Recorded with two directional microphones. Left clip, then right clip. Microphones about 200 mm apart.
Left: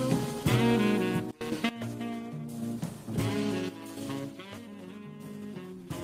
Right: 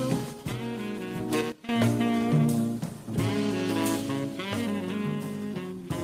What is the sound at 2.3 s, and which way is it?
Music, 85° right.